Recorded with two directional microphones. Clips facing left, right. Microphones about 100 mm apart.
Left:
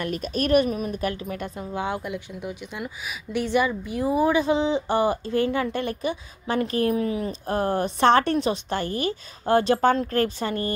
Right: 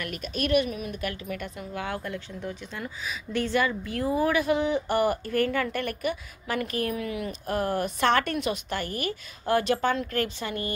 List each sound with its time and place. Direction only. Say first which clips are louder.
0.0 s a woman's voice: left 5 dB; 35° left (ahead or behind)